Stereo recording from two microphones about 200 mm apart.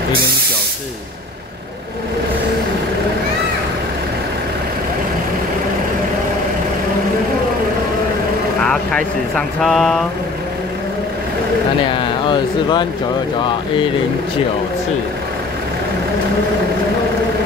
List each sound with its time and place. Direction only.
9.6 s speech: centre (ahead or behind)
11.9 s speech: 25° left (ahead or behind)